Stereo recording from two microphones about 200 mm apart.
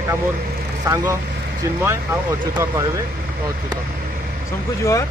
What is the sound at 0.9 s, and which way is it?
Speech, 15° right (ahead or behind).